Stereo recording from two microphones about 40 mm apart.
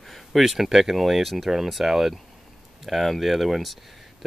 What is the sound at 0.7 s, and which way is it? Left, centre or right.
Speech, centre.